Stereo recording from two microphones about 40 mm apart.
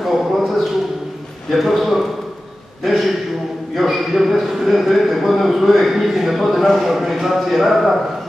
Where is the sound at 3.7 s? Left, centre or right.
Centre.